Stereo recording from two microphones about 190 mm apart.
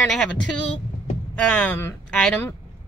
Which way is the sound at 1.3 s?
5° left (ahead or behind).